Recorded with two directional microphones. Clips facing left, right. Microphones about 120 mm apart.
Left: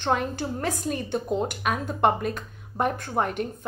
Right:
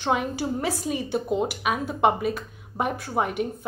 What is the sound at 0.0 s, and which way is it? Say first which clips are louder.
A woman's voice: right 1 dB; 5° right (ahead or behind).